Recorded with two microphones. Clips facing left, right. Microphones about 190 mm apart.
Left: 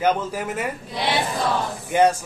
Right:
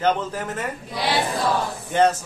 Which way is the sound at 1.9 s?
10° left (ahead or behind).